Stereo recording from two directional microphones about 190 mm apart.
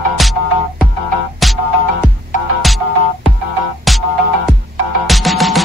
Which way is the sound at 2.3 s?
45° left (ahead or behind).